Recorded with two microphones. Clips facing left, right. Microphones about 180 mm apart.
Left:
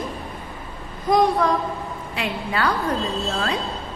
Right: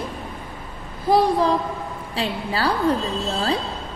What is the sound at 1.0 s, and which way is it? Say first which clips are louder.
A woman's voice: right 1 dB; 30° right (ahead or behind).